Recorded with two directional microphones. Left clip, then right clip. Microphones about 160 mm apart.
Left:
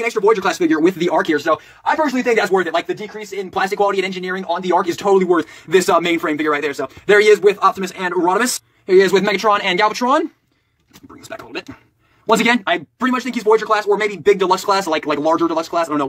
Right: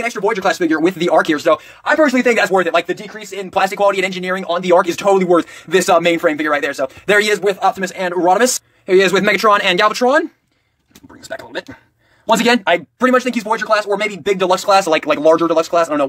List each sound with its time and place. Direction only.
0.0 s speech: 20° right (ahead or behind)
1.2 s speech: 35° right (ahead or behind)
2.0 s speech: 45° right (ahead or behind)
2.5 s speech: 30° right (ahead or behind); by 8.5 s 15° right (ahead or behind)
8.8 s speech: 25° right (ahead or behind)
12.3 s speech: 15° right (ahead or behind)